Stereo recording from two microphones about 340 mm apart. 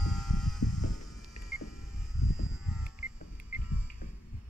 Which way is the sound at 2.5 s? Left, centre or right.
Centre.